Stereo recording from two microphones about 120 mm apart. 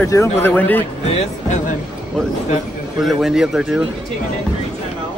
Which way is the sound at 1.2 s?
80° left.